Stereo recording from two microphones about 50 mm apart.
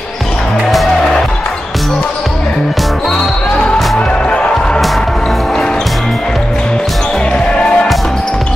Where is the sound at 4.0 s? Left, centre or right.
Left.